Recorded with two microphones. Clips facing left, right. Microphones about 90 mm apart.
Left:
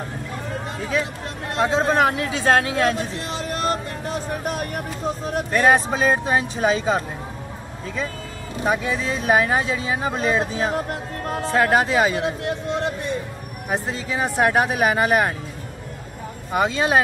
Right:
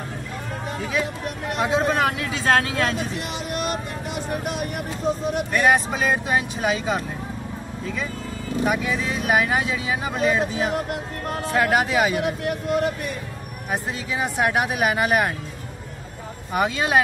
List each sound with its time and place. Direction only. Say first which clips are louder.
1.6 s a man's voice: left 3 dB; 30° left (ahead or behind)
8.6 s speech: left 3 dB; 30° left (ahead or behind)
16.5 s speech: left 1 dB; 25° left (ahead or behind)